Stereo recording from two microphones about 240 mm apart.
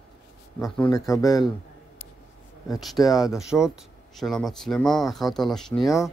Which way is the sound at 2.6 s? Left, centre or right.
Centre.